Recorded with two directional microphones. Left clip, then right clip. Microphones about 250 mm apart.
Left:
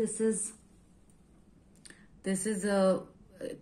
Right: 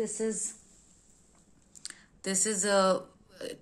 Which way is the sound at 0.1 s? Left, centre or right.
Left.